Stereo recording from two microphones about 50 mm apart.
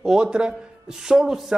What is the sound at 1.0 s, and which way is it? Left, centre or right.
Speech, centre.